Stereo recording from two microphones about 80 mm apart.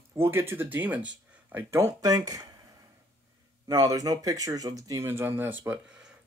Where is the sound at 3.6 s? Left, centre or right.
Right.